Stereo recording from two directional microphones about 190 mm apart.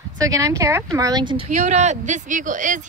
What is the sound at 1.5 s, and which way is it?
Speech, 40° right (ahead or behind).